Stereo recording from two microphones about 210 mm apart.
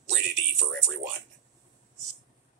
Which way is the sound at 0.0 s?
55° right (ahead or behind).